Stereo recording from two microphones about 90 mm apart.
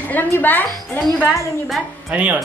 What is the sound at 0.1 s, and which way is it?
Speech, 20° left (ahead or behind).